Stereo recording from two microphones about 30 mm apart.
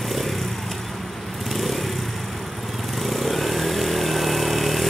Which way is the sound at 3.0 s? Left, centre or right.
Centre.